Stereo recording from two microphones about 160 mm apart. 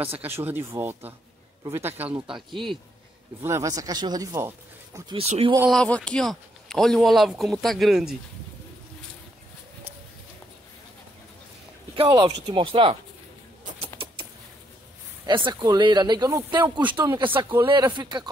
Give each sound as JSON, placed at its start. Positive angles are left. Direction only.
{"t": 0.2, "sound": "speech", "side_deg": -15}
{"t": 2.2, "sound": "speech", "side_deg": 0}
{"t": 3.4, "sound": "speech", "side_deg": -20}
{"t": 5.1, "sound": "speech", "side_deg": -40}
{"t": 5.7, "sound": "speech", "side_deg": 5}
{"t": 11.9, "sound": "speech", "side_deg": -30}
{"t": 15.2, "sound": "speech", "side_deg": -30}